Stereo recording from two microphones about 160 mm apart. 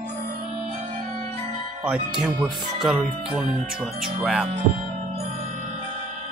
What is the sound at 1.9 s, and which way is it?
Speech, 5° right (ahead or behind).